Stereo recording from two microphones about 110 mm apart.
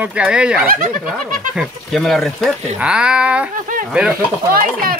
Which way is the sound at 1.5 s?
Centre (ahead or behind).